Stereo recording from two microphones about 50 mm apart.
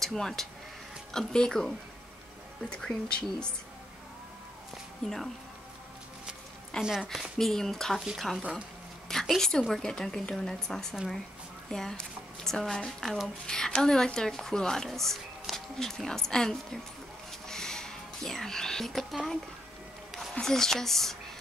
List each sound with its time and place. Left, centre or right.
0.0 s a woman's voice: centre
2.7 s a woman's voice: centre
5.0 s speech: centre
6.8 s a woman's voice: centre
7.1 s a woman's voice: centre
17.3 s whispering: centre
20.2 s a woman's voice: centre